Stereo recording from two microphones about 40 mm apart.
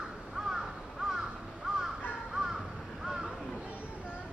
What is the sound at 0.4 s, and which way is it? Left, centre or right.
Crow, centre.